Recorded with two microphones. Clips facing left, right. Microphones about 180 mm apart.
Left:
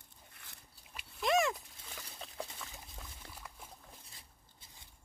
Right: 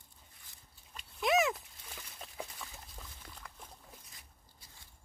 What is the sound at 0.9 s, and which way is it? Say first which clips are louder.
Dog: right 1 dB; centre (ahead or behind).